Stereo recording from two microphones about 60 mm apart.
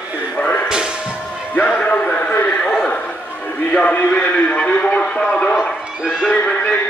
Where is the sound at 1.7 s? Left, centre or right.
Left.